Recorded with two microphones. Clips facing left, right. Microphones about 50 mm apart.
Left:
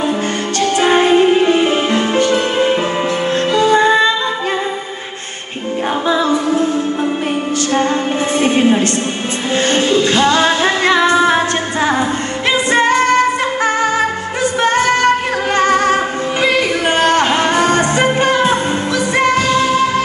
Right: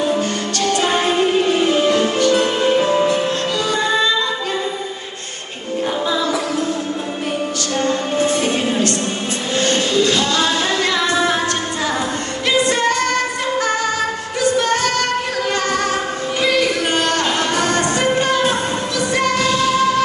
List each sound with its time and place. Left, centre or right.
0.6 s music: left
7.7 s music: left